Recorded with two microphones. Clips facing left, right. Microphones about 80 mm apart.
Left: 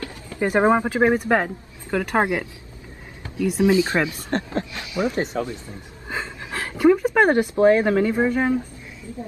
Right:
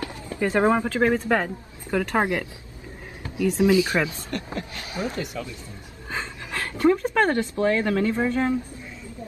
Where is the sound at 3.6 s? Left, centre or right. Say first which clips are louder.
Left 2 dB; left.